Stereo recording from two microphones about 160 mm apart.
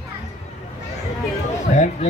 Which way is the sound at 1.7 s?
50° left (ahead or behind).